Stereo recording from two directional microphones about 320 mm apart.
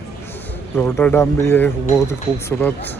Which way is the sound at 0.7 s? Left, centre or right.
Centre.